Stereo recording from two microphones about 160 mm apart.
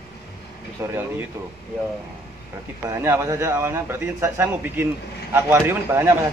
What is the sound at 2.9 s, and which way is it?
A man's voice, 15° right (ahead or behind).